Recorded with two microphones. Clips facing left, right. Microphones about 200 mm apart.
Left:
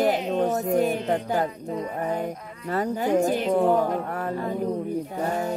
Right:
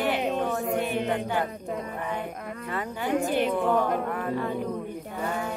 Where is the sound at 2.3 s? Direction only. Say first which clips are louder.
Right 4 dB; 60° right (ahead or behind).